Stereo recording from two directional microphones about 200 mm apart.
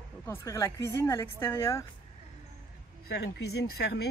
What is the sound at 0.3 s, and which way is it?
Speech, 15° left (ahead or behind).